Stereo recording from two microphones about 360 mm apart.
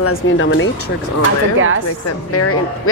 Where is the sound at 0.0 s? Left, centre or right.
Left.